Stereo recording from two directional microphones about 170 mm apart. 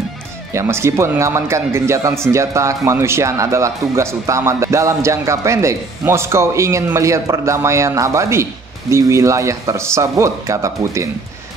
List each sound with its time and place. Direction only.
0.5 s speech: 15° right (ahead or behind)